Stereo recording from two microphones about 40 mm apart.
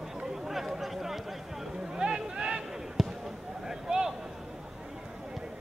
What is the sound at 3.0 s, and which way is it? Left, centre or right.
Basketball bounce, centre.